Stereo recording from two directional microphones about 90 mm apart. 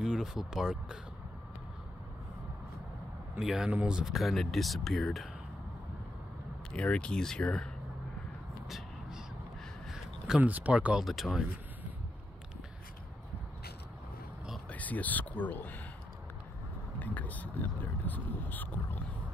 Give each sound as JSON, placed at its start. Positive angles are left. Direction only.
{"t": 0.0, "sound": "speech", "side_deg": -5}
{"t": 3.3, "sound": "speech", "side_deg": -5}
{"t": 6.7, "sound": "speech", "side_deg": 10}
{"t": 8.6, "sound": "vehicle", "side_deg": -5}
{"t": 9.8, "sound": "a sound", "side_deg": -5}
{"t": 10.4, "sound": "speech", "side_deg": -15}
{"t": 11.1, "sound": "speech", "side_deg": 0}
{"t": 14.7, "sound": "speech", "side_deg": 15}
{"t": 17.0, "sound": "speech", "side_deg": 20}